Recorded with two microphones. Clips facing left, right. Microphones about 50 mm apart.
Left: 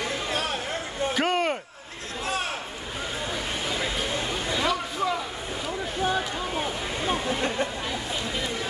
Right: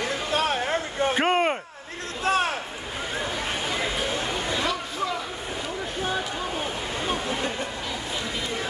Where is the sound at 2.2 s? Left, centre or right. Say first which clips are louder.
Right 6 dB; right.